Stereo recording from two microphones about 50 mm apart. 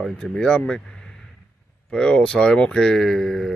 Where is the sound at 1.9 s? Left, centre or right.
Centre.